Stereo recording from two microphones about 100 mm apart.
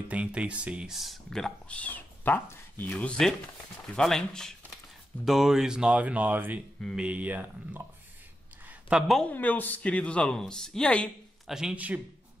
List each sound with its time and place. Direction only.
0.1 s speech: 10° right (ahead or behind)
8.9 s speech: centre (ahead or behind)
9.2 s speech: 15° left (ahead or behind)
11.4 s speech: 5° right (ahead or behind)